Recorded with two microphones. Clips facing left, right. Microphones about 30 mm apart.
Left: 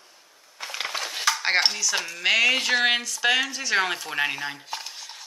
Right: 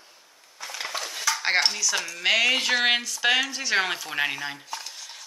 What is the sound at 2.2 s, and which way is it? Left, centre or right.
Speech, centre.